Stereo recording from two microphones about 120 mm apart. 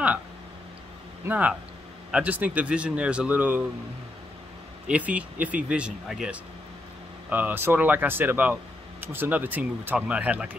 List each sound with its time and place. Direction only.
1.2 s speech: 15° right (ahead or behind)
4.8 s speech: 10° right (ahead or behind)